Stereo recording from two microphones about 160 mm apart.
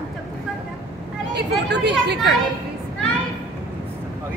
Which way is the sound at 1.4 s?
90° right.